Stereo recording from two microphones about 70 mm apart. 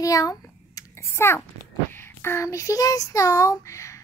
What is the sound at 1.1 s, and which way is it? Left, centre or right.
Speech, left.